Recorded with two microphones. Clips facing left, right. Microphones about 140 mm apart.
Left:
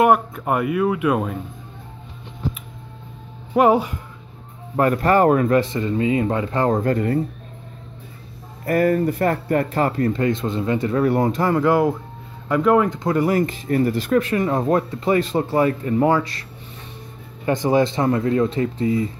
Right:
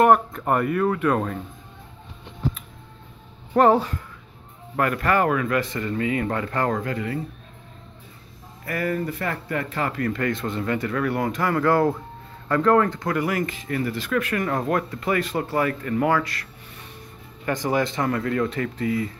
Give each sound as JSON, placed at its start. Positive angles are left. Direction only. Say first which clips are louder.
{"t": 0.0, "sound": "speech", "louder": "left 1 dB", "side_deg": 5}
{"t": 3.5, "sound": "speech", "louder": "left 1 dB", "side_deg": 10}
{"t": 4.7, "sound": "speech", "louder": "left 5 dB", "side_deg": 30}
{"t": 5.6, "sound": "speech", "louder": "left 5 dB", "side_deg": 25}
{"t": 6.8, "sound": "speech", "louder": "left 8 dB", "side_deg": 45}
{"t": 8.6, "sound": "speech", "louder": "left 8 dB", "side_deg": 40}
{"t": 14.2, "sound": "speech", "louder": "left 4 dB", "side_deg": 25}
{"t": 17.5, "sound": "speech", "louder": "left 5 dB", "side_deg": 25}